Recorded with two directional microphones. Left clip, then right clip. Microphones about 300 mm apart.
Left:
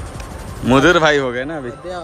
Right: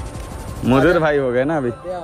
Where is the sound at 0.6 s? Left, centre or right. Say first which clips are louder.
Left 3 dB; centre.